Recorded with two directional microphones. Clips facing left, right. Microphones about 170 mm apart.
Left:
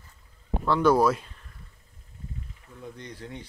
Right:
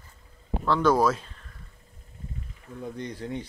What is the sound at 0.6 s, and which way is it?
Speech, 5° left (ahead or behind).